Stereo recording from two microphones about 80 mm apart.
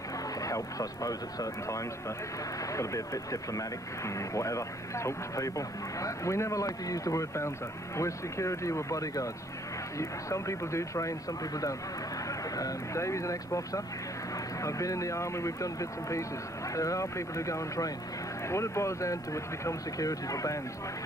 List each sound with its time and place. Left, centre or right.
0.4 s speech: left